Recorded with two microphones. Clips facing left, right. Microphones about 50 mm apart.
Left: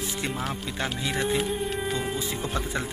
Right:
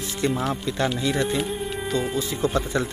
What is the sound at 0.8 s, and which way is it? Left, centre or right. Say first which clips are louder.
Speech: right 4 dB; centre.